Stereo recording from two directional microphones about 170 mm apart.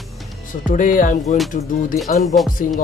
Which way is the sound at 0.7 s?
50° left (ahead or behind).